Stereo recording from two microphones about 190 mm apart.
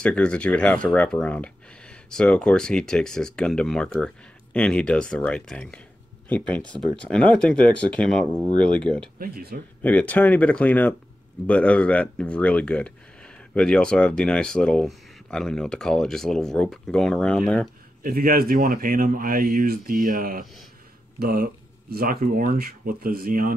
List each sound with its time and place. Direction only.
0.0 s speech: 5° left (ahead or behind)
9.2 s speech: 55° right (ahead or behind)
9.8 s speech: 10° left (ahead or behind)
18.0 s speech: 50° right (ahead or behind)